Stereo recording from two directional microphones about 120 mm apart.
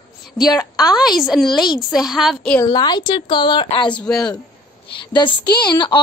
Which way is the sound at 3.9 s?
5° left (ahead or behind).